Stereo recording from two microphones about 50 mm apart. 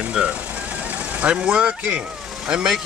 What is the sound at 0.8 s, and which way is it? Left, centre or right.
Vehicle, right.